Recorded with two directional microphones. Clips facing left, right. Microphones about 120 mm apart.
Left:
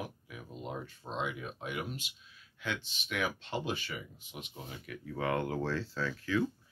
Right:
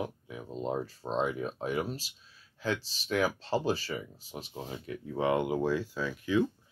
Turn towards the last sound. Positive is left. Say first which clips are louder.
# right 4 dB
turn(degrees=-15)  # may be behind; listen again after turning